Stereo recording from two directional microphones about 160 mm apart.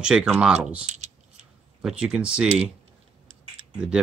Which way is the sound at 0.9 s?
45° right (ahead or behind).